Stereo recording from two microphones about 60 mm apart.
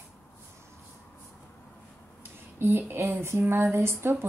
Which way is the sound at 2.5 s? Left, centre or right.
Right.